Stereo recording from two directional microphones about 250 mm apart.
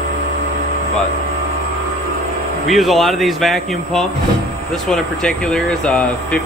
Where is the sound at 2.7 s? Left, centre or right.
Centre.